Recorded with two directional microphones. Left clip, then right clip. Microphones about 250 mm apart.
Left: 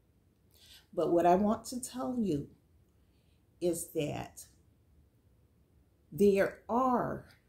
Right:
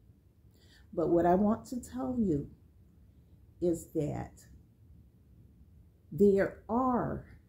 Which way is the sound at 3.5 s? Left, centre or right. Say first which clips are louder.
Right 1 dB; centre.